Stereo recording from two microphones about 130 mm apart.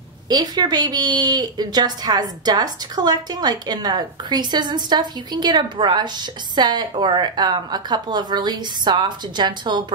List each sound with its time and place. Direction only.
0.3 s a woman's voice: 30° right (ahead or behind)